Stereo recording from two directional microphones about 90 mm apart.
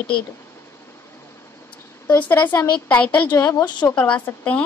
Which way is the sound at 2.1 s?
20° left (ahead or behind).